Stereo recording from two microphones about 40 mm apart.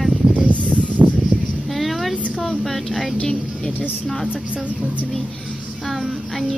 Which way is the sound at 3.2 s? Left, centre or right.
Centre.